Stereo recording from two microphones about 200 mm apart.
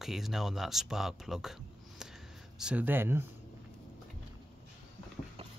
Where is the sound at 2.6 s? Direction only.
5° right (ahead or behind).